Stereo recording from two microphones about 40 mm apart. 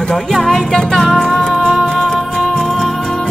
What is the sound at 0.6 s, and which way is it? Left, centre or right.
Music, centre.